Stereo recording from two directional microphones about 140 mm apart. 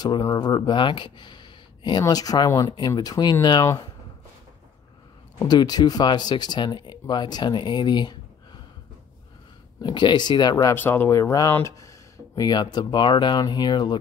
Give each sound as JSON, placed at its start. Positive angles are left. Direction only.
{"t": 0.0, "sound": "speech", "side_deg": 25}
{"t": 5.4, "sound": "speech", "side_deg": 30}
{"t": 9.8, "sound": "speech", "side_deg": 30}
{"t": 10.8, "sound": "speech", "side_deg": 15}